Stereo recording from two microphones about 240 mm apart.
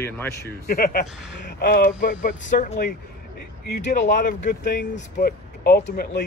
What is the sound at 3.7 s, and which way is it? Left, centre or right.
Speech, left.